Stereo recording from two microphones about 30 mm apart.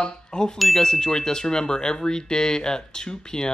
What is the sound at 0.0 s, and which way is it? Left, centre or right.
Speech, left.